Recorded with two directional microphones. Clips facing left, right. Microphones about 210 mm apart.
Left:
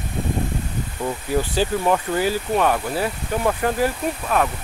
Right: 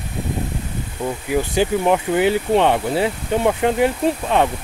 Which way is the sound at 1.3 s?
15° right (ahead or behind).